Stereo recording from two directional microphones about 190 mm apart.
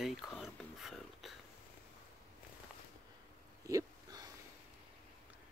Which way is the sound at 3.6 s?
15° right (ahead or behind).